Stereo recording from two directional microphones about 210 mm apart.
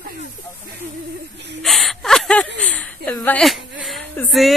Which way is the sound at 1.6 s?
Centre (ahead or behind).